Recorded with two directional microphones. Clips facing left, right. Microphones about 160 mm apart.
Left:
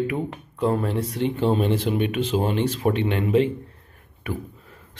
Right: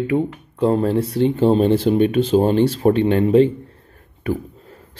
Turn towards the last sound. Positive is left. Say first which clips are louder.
# right 8 dB
turn(degrees=-30)  # may be behind; listen again after turning